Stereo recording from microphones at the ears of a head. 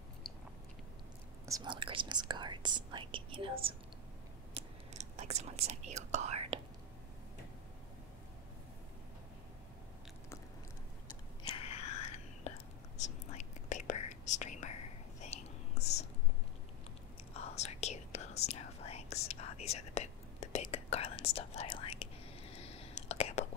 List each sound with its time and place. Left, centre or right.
2.0 s speech: right
4.6 s whispering: right
11.4 s whispering: left
17.3 s whispering: left